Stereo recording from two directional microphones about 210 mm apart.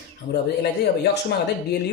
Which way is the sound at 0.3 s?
50° left (ahead or behind).